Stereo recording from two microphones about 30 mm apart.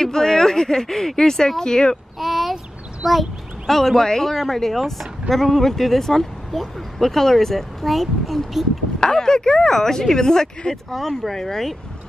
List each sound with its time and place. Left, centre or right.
0.0 s speech: centre
2.1 s a sound: centre
3.0 s speech: centre
9.0 s speech: left
10.9 s speech: centre